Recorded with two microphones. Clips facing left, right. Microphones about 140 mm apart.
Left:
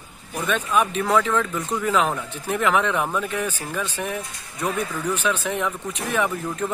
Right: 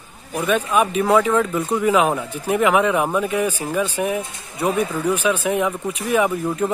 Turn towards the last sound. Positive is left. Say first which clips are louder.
# right 5 dB
turn(degrees=-10)  # may be behind; listen again after turning